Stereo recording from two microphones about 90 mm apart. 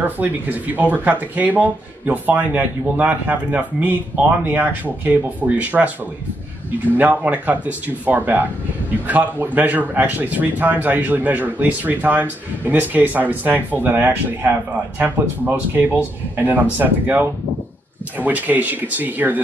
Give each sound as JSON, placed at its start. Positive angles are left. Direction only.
{"t": 0.0, "sound": "speech", "side_deg": -20}
{"t": 7.0, "sound": "speech", "side_deg": -20}